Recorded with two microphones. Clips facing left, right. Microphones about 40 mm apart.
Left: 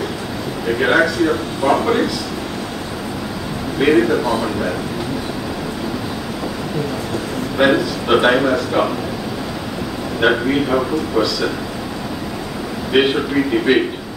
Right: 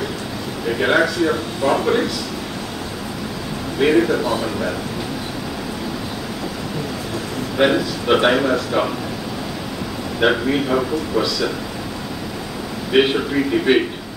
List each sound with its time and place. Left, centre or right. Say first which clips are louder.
0.7 s a man's voice: left 2 dB; centre
3.8 s speech: left 2 dB; centre
7.5 s a man's voice: left 2 dB; centre
10.2 s a man's voice: left 2 dB; centre
12.9 s a man's voice: left 1 dB; centre